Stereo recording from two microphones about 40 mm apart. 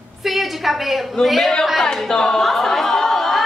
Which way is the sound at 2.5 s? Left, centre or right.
Centre.